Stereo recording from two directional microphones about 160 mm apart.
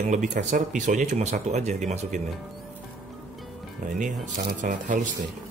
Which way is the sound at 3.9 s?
55° right (ahead or behind).